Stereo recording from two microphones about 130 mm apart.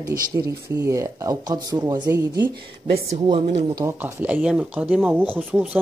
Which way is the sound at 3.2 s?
40° right (ahead or behind).